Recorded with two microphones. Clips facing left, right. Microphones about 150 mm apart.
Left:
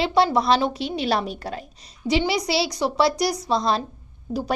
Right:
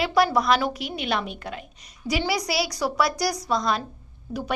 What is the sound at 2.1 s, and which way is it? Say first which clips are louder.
A child's voice: left 4 dB; 25° left (ahead or behind).